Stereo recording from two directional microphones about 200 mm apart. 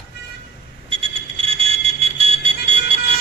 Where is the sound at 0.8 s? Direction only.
25° right (ahead or behind).